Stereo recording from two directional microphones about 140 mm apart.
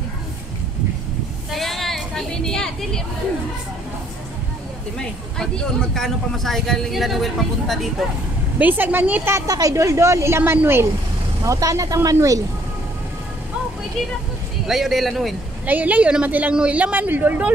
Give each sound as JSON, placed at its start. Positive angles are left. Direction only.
{"t": 1.5, "sound": "a sound", "side_deg": 0}
{"t": 4.9, "sound": "speech", "side_deg": 5}
{"t": 8.5, "sound": "a woman's voice", "side_deg": -15}
{"t": 14.7, "sound": "speech", "side_deg": 0}
{"t": 15.6, "sound": "a woman's voice", "side_deg": -10}